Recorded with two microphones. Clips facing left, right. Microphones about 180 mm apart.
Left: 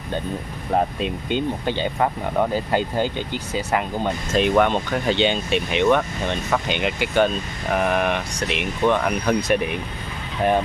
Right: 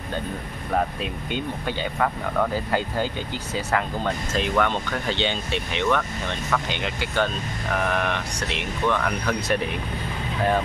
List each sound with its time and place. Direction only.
1.3 s speech: 25° left (ahead or behind)